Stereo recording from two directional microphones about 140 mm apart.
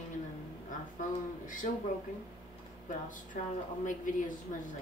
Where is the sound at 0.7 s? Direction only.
70° left (ahead or behind).